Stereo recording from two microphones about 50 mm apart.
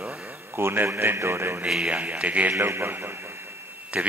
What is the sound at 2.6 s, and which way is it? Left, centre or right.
Speech, right.